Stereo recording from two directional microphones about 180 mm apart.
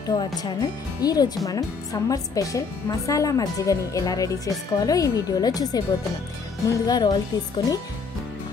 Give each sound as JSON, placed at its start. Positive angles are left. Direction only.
{"t": 0.2, "sound": "a woman's voice", "side_deg": 20}